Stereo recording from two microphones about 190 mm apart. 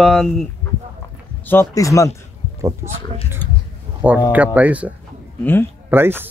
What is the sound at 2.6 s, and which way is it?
Speech, 15° right (ahead or behind).